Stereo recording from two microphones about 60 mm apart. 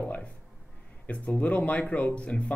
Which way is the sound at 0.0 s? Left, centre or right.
Left.